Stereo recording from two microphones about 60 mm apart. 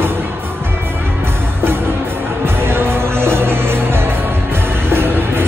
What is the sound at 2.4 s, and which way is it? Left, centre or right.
Music, right.